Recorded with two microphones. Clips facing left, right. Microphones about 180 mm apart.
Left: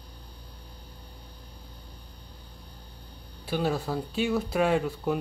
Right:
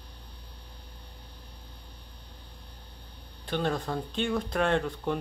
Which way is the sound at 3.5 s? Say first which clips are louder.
Left 2 dB; 5° left (ahead or behind).